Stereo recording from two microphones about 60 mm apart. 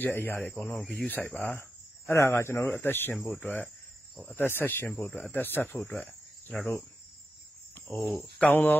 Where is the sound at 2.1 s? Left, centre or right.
Left.